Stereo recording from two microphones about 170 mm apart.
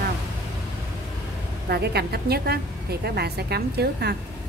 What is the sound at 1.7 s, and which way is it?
A woman's voice, 70° right (ahead or behind).